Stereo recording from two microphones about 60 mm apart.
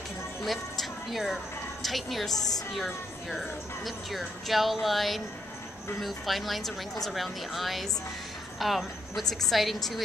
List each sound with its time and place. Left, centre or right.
0.4 s a woman's voice: centre
2.3 s a woman's voice: left
2.7 s speech: centre